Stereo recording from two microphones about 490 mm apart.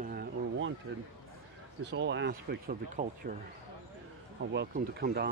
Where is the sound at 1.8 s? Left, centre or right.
Right.